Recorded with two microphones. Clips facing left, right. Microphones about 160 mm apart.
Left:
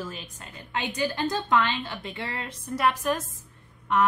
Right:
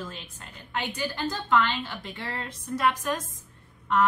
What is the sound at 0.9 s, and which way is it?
Speech, 15° left (ahead or behind).